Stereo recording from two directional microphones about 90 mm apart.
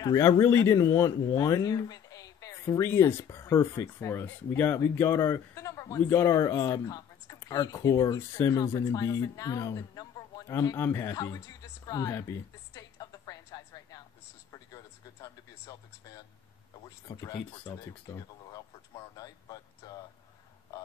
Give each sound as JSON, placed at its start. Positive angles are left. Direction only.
{"t": 0.0, "sound": "a man's voice", "side_deg": 40}
{"t": 8.2, "sound": "speech", "side_deg": 30}
{"t": 10.8, "sound": "speech", "side_deg": 30}
{"t": 11.3, "sound": "speech", "side_deg": 45}
{"t": 12.2, "sound": "a sound", "side_deg": 35}
{"t": 15.2, "sound": "a man's voice", "side_deg": 40}